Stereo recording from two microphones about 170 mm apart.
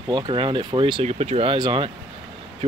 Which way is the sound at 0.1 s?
30° right (ahead or behind).